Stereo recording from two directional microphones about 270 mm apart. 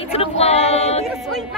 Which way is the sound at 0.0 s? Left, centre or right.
Left.